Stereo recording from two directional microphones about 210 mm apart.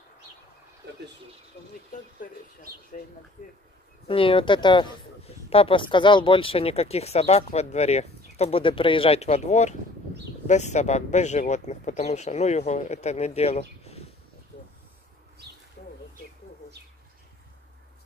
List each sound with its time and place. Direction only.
2.2 s speech: 40° left (ahead or behind)
4.1 s speech: 25° left (ahead or behind)
15.8 s a sound: 50° left (ahead or behind)